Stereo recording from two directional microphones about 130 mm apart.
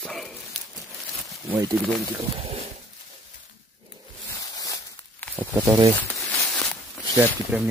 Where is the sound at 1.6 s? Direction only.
25° right (ahead or behind).